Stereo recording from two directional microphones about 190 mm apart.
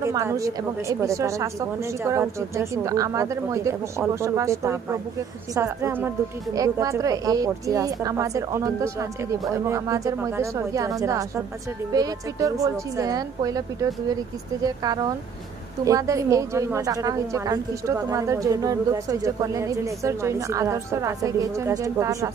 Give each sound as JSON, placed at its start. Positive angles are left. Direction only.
{"t": 0.0, "sound": "a woman's voice", "side_deg": -15}